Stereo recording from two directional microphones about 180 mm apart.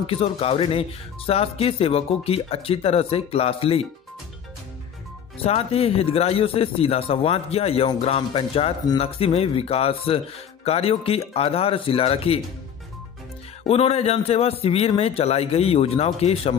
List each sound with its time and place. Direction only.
0.0 s speech: 30° left (ahead or behind)
5.4 s speech: 35° left (ahead or behind)
13.7 s speech: 35° left (ahead or behind)